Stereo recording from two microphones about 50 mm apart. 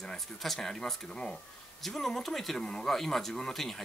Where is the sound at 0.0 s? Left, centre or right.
Centre.